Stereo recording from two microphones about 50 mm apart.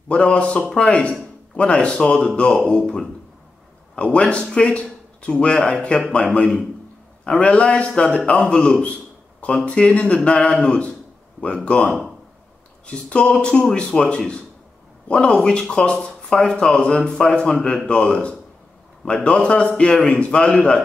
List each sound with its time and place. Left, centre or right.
0.1 s speech: left
7.2 s speech: left